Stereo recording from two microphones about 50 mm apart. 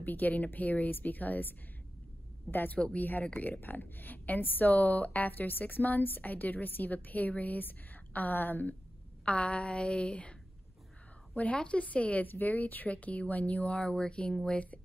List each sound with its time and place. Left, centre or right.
0.0 s a woman's voice: left
2.5 s a woman's voice: left
9.2 s speech: left
11.5 s speech: left